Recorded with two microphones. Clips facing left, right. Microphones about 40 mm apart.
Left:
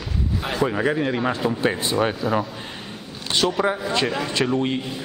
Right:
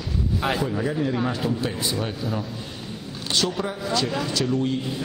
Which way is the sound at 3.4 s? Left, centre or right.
Left.